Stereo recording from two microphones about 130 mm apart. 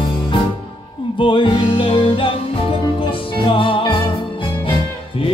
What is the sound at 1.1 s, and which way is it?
Music, 40° left (ahead or behind).